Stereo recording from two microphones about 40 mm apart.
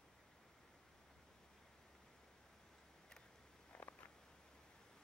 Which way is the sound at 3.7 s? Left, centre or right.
Left.